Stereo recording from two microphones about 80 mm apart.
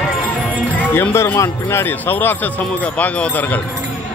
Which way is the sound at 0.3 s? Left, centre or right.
Centre.